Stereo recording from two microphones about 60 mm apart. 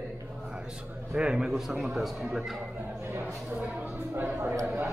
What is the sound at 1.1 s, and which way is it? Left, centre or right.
A man's voice, centre.